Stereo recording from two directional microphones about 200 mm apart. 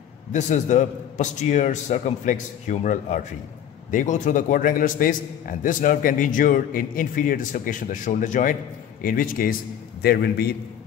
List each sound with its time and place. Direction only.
0.3 s a man's voice: 35° left (ahead or behind)